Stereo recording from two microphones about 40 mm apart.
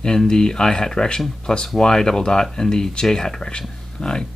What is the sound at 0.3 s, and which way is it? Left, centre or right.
Speech, centre.